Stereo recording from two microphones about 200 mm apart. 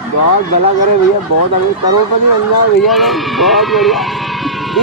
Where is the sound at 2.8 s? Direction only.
Centre (ahead or behind).